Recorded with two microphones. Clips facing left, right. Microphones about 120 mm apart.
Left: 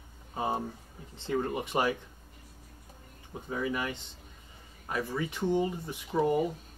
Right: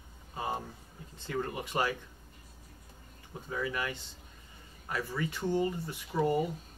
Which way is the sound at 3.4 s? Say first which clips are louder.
Left 2 dB; 20° left (ahead or behind).